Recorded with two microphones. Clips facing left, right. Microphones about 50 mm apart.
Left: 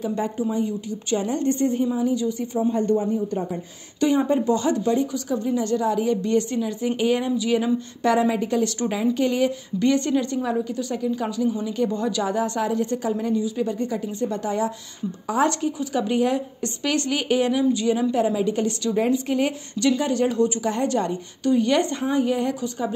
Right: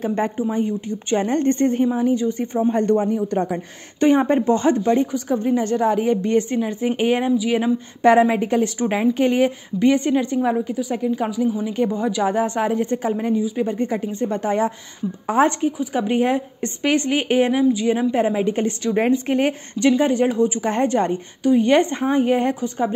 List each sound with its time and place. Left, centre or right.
0.0 s speech: right
2.7 s a man's voice: right
3.3 s speech: right
4.0 s speech: right
7.3 s speech: centre; by 9.5 s right
9.8 s a woman's voice: centre
10.7 s a woman's voice: centre
11.6 s a woman's voice: right
11.9 s a woman's voice: centre
12.2 s a woman's voice: right
20.6 s speech: right
21.4 s a woman's voice: centre
21.6 s speech: right